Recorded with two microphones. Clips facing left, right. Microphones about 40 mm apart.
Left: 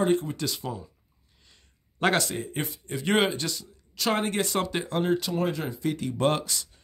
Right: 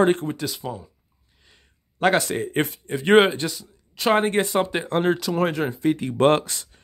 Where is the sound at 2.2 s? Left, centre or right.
Right.